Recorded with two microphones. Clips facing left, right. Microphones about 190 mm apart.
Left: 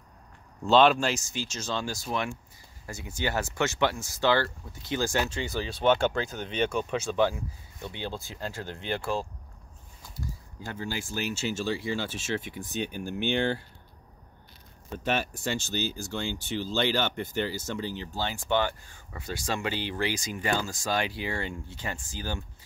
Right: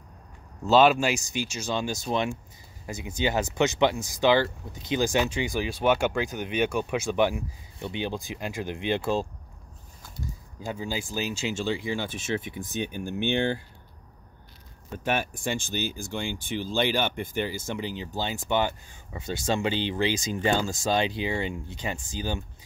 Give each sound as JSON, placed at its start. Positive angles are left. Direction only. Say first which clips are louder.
{"t": 0.7, "sound": "speech", "louder": "right 1 dB", "side_deg": -5}
{"t": 11.3, "sound": "speech", "louder": "right 1 dB", "side_deg": -15}
{"t": 15.0, "sound": "speech", "louder": "right 1 dB", "side_deg": -15}